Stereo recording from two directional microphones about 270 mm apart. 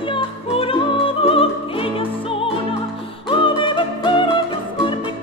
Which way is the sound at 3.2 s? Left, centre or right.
Centre.